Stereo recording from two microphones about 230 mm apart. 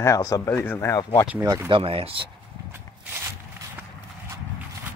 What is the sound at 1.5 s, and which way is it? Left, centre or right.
Speech, centre.